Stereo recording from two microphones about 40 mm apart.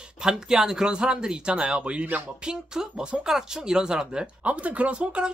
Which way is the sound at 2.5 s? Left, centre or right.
Centre.